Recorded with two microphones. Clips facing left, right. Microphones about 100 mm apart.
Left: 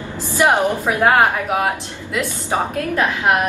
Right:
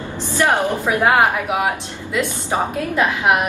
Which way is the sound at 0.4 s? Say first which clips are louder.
Left 2 dB; 15° left (ahead or behind).